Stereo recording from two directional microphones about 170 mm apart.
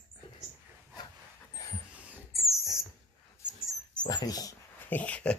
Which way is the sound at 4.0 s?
25° left (ahead or behind).